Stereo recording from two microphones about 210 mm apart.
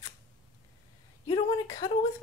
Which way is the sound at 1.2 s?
20° left (ahead or behind).